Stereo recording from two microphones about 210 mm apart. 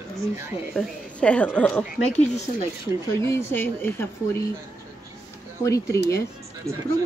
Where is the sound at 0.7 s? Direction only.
5° left (ahead or behind).